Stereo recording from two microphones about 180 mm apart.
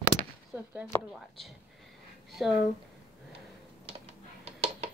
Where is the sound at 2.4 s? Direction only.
Centre (ahead or behind).